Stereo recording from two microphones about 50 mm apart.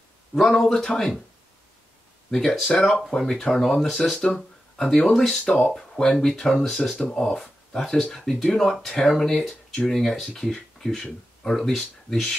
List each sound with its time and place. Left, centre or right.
0.4 s speech: centre
2.3 s speech: centre